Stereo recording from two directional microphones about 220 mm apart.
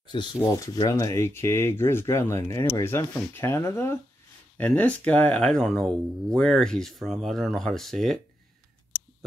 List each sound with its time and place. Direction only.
0.1 s speech: 20° left (ahead or behind); by 8.2 s centre (ahead or behind)